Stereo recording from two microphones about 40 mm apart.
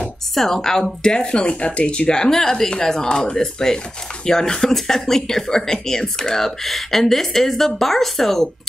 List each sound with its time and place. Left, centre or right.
0.3 s speech: centre